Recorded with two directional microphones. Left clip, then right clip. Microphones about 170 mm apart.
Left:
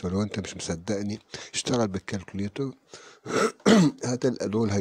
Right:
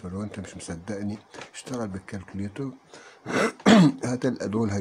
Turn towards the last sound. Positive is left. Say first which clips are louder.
# left 1 dB
turn(degrees=30)  # may be behind; listen again after turning